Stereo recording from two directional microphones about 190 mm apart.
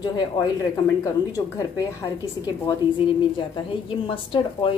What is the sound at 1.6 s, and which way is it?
A woman's voice, 20° left (ahead or behind).